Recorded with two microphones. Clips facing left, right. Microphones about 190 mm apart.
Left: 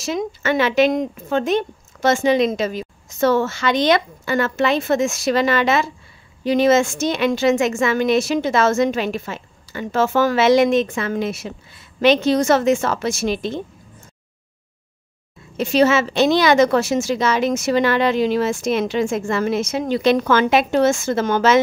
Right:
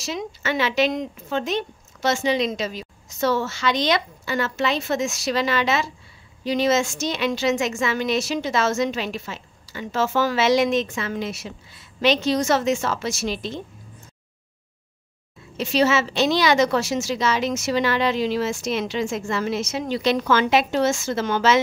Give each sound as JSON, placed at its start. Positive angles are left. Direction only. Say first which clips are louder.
{"t": 0.0, "sound": "a woman's voice", "louder": "left 6 dB", "side_deg": 50}
{"t": 15.5, "sound": "a woman's voice", "louder": "left 4 dB", "side_deg": 50}